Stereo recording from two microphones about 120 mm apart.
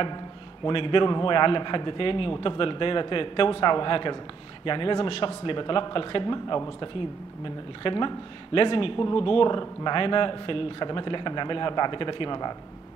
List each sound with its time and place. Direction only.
0.7 s speech: 45° left (ahead or behind)